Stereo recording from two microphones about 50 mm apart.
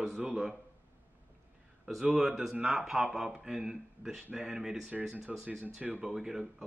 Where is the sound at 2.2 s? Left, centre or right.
Centre.